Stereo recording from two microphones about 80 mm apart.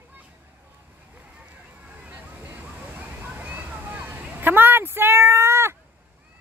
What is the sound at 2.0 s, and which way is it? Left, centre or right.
Water, centre.